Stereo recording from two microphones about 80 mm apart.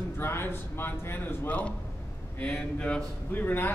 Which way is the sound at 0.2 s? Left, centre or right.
Left.